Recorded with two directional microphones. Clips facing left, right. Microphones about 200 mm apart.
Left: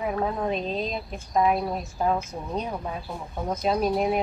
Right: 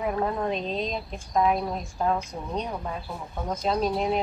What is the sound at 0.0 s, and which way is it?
A woman's voice, 5° left (ahead or behind).